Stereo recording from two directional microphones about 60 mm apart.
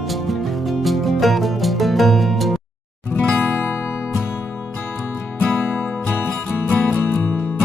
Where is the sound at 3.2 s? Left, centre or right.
Left.